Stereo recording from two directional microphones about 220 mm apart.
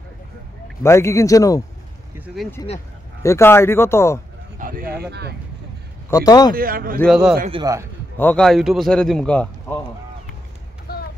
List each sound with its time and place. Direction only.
0.8 s speech: 10° left (ahead or behind)
2.1 s a man's voice: 5° right (ahead or behind)
3.2 s speech: 10° left (ahead or behind)
4.6 s speech: 40° right (ahead or behind)
6.0 s speech: 15° left (ahead or behind)
6.5 s speech: 40° right (ahead or behind)
7.1 s speech: 5° right (ahead or behind)
7.5 s a man's voice: 15° right (ahead or behind)
8.2 s speech: 5° left (ahead or behind)
10.9 s a sound: 45° left (ahead or behind)